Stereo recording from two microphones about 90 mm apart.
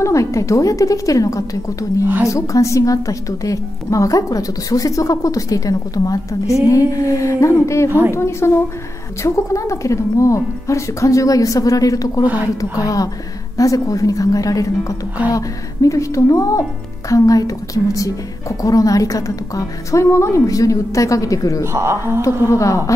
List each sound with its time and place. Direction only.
0.0 s a woman's voice: 35° left (ahead or behind)
21.7 s speech: 30° right (ahead or behind)
22.2 s a woman's voice: 35° left (ahead or behind)